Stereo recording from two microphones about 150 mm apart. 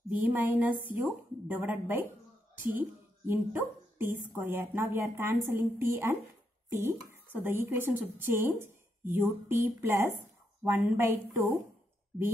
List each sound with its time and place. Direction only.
0.1 s speech: 10° right (ahead or behind)
3.3 s speech: 15° right (ahead or behind)